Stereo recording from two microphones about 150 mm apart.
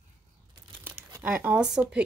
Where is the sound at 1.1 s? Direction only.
15° right (ahead or behind).